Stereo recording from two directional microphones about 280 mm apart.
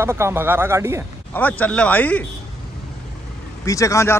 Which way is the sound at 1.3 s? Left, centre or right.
Centre.